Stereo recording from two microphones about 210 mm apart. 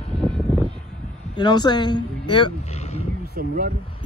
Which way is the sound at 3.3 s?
45° right (ahead or behind).